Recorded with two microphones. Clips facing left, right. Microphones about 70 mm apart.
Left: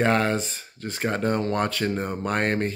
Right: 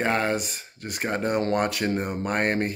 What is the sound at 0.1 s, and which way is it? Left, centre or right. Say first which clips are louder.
Speech: left 2 dB; centre.